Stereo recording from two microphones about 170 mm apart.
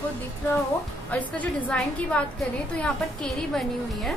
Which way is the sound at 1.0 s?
10° left (ahead or behind).